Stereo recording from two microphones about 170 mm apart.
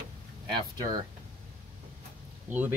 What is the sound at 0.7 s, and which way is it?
Speech, 25° right (ahead or behind).